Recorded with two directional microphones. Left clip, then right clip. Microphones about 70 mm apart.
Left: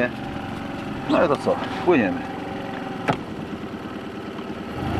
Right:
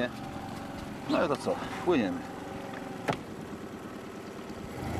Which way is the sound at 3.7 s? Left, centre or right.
Centre.